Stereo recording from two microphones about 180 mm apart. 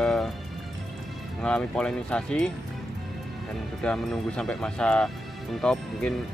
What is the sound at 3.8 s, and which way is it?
Speech, 5° left (ahead or behind).